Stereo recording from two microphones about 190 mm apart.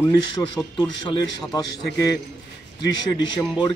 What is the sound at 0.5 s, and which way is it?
A man's voice, 20° left (ahead or behind).